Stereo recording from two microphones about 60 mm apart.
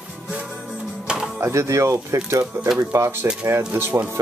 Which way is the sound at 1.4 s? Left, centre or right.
Right.